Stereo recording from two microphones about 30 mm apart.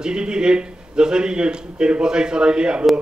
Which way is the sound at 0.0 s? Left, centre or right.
Right.